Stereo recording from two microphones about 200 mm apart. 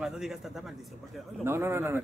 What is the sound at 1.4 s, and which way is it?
Speech, 10° right (ahead or behind).